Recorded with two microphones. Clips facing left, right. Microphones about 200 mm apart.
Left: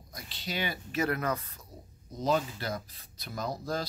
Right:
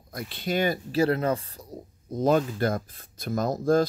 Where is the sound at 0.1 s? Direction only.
55° right (ahead or behind).